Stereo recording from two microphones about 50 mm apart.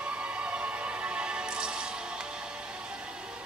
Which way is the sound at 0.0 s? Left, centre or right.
Right.